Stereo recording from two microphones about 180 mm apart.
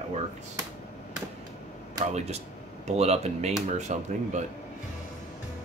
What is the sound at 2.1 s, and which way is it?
Speech, 35° right (ahead or behind).